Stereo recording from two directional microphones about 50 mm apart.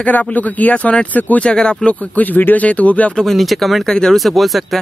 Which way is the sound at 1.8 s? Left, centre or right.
Left.